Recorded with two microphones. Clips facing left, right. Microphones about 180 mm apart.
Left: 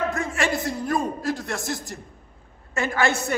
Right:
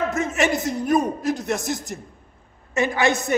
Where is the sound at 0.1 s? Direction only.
20° right (ahead or behind).